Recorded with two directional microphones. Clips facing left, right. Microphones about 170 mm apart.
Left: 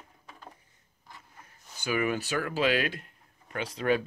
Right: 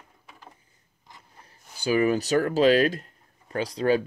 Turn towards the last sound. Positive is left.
turn(degrees=-35)  # may be behind; listen again after turning